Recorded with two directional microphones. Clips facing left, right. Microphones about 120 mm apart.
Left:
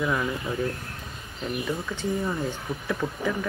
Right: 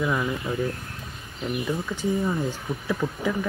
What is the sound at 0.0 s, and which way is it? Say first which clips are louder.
Speech: right 1 dB; 5° right (ahead or behind).